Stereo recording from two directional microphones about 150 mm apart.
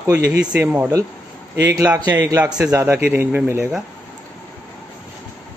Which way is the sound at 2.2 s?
10° right (ahead or behind).